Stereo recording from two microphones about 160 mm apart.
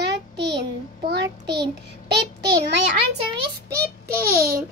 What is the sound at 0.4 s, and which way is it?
Child singing, 90° right.